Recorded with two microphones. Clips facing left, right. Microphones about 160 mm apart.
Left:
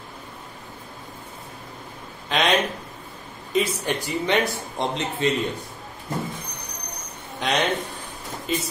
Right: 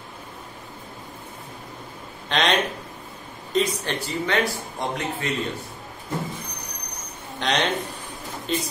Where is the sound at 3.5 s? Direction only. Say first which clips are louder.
Even; 15° left (ahead or behind).